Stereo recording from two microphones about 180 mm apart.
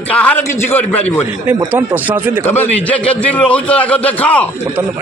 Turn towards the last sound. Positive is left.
turn(degrees=10)  # may be behind; listen again after turning